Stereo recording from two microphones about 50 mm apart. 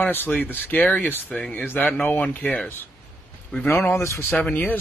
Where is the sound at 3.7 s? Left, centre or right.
Left.